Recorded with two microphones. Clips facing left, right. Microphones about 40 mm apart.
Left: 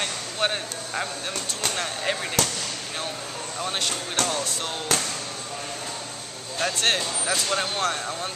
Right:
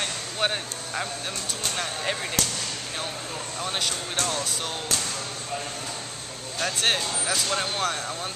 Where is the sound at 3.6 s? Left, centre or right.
Centre.